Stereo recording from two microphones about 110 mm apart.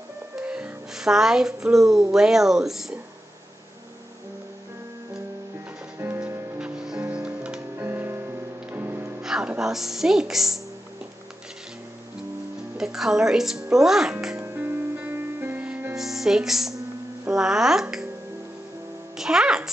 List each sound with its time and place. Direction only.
0.4 s speech: 10° right (ahead or behind)
5.9 s music: 20° right (ahead or behind)
6.6 s music: 10° right (ahead or behind)
9.2 s music: 5° right (ahead or behind)
9.6 s speech: 5° right (ahead or behind)
12.7 s speech: 5° right (ahead or behind)
14.3 s music: 20° right (ahead or behind)
16.0 s speech: 5° right (ahead or behind)
19.1 s speech: 5° right (ahead or behind)